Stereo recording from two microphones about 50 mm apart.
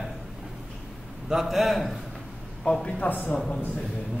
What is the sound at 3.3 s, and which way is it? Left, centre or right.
Speech, centre.